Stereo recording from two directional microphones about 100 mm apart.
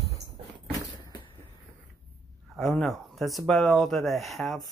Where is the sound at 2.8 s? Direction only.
Centre (ahead or behind).